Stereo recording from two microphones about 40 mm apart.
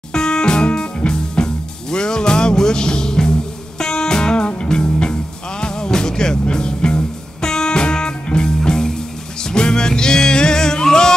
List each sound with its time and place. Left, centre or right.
0.1 s music: centre